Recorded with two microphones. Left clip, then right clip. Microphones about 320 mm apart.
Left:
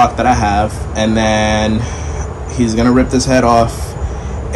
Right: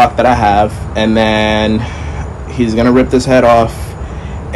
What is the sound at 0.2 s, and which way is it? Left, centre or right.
A man's voice, centre.